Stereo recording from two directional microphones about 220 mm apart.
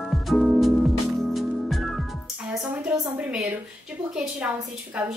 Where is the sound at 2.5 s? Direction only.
5° right (ahead or behind).